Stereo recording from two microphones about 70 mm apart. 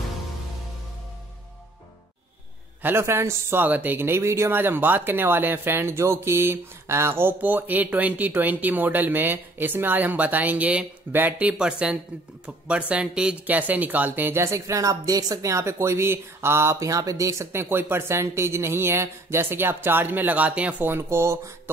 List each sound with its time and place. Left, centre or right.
2.8 s speech: right
4.6 s speech: right
16.8 s speech: right; by 20.9 s centre
20.9 s speech: right